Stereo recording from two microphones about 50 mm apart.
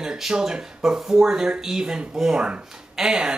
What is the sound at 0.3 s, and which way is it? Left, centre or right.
Speech, centre.